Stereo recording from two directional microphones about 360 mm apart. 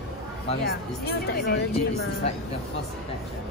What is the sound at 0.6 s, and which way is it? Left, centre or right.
Speech, left.